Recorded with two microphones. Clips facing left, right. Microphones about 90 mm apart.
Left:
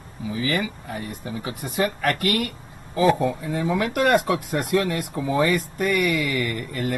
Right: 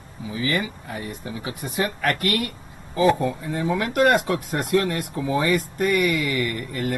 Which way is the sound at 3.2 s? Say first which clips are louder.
Left 1 dB; 15° left (ahead or behind).